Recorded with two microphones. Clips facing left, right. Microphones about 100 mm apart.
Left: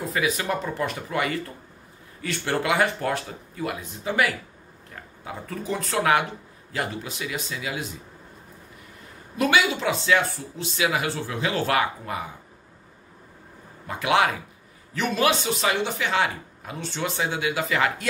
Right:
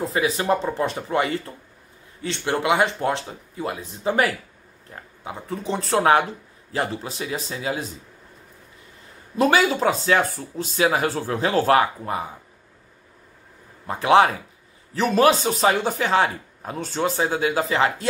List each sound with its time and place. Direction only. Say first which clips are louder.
0.0 s speech: right 3 dB; 30° right (ahead or behind)
4.9 s speech: right 2 dB; 25° right (ahead or behind)
9.4 s speech: right 4 dB; 40° right (ahead or behind)
13.8 s speech: right 5 dB; 35° right (ahead or behind)